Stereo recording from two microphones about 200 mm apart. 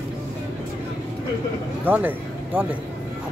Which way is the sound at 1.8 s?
10° right (ahead or behind).